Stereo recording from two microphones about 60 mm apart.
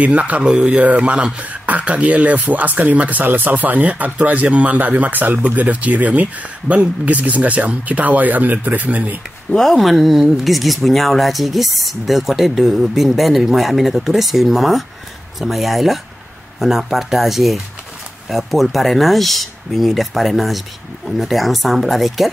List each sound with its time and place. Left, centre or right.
0.0 s speech: right
9.5 s speech: centre